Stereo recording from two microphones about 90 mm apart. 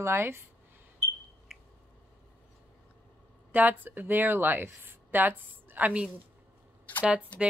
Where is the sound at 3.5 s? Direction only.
20° right (ahead or behind).